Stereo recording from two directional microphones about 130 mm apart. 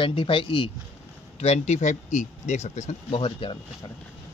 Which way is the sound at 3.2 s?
45° left (ahead or behind).